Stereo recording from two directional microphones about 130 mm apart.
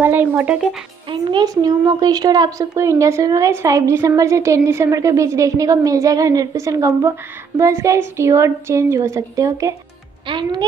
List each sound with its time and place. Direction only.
0.0 s speech: 15° right (ahead or behind)
1.4 s a woman's voice: 30° right (ahead or behind)
10.2 s a woman's voice: 40° right (ahead or behind)